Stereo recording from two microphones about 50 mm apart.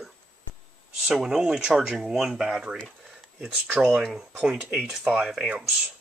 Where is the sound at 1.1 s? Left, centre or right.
Centre.